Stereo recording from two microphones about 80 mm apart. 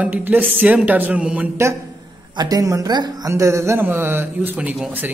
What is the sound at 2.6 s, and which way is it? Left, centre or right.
A man's voice, right.